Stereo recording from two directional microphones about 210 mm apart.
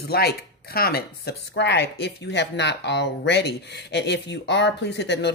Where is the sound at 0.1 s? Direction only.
50° left (ahead or behind).